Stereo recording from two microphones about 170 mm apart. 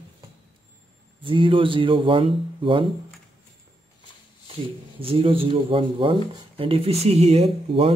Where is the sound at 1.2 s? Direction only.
30° right (ahead or behind).